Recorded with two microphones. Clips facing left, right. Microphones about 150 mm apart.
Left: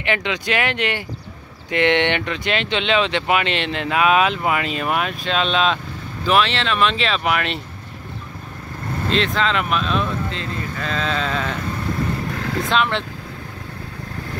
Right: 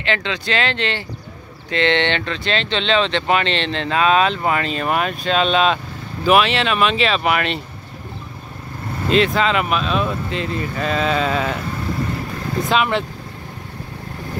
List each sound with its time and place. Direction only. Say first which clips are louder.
0.0 s speech: even; 15° left (ahead or behind); by 7.6 s centre (ahead or behind)
9.1 s speech: right 4 dB; 10° right (ahead or behind)
10.3 s speech: right 4 dB; 15° right (ahead or behind)
12.6 s speech: right 3 dB; 5° right (ahead or behind)